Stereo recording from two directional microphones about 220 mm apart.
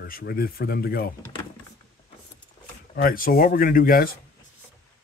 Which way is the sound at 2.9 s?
40° left (ahead or behind).